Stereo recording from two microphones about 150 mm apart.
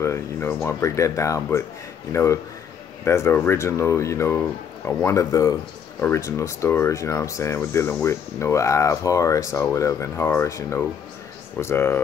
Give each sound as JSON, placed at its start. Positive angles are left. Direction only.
{"t": 0.0, "sound": "speech", "side_deg": 20}